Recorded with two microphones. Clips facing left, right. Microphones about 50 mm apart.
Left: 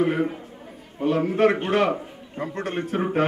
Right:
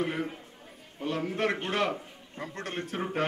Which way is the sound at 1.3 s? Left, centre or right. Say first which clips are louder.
Left 10 dB; centre.